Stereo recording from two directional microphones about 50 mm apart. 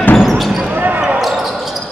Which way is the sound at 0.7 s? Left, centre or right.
Right.